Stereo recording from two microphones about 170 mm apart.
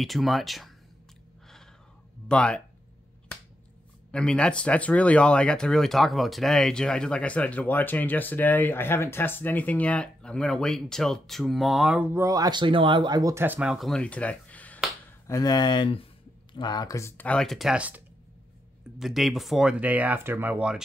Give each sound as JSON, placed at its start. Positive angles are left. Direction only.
{"t": 0.0, "sound": "speech", "side_deg": 0}
{"t": 2.2, "sound": "speech", "side_deg": 5}
{"t": 4.1, "sound": "speech", "side_deg": 5}
{"t": 15.2, "sound": "speech", "side_deg": 20}